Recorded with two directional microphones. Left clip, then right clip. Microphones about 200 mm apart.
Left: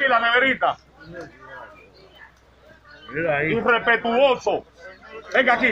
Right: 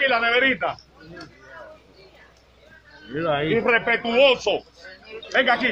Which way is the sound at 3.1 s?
20° right (ahead or behind).